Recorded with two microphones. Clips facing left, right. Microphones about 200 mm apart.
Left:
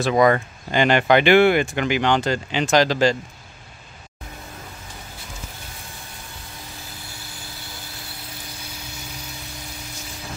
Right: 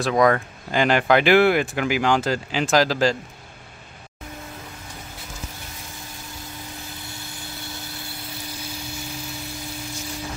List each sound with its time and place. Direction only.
0.0 s speech: centre (ahead or behind)